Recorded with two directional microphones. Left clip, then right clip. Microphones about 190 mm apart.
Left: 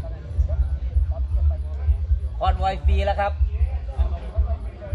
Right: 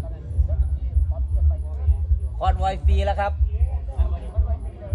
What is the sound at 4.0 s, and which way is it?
Music, 40° right (ahead or behind).